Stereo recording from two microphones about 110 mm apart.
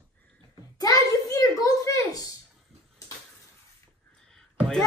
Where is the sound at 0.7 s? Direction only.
35° left (ahead or behind).